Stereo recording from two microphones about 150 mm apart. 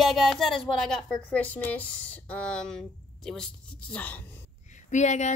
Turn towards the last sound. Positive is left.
turn(degrees=50)  # may be behind; listen again after turning